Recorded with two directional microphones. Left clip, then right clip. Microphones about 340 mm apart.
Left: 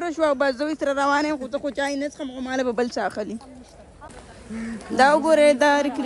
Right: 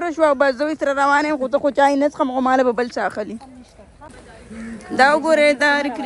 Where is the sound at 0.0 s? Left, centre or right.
Centre.